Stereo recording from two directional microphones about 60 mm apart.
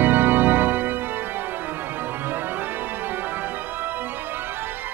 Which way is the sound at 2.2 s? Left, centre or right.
Right.